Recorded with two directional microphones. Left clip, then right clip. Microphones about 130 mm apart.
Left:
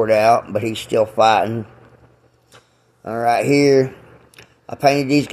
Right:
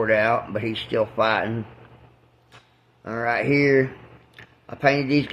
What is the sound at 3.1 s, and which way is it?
A man's voice, 35° left (ahead or behind).